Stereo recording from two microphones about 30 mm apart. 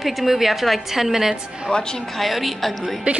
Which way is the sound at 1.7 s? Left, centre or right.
Left.